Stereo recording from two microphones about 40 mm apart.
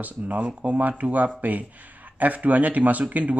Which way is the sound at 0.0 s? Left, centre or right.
Right.